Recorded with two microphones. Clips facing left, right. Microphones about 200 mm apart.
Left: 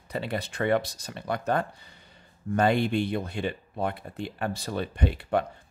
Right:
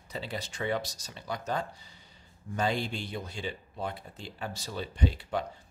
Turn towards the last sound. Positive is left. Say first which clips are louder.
# left 4 dB
turn(degrees=60)  # may be behind; listen again after turning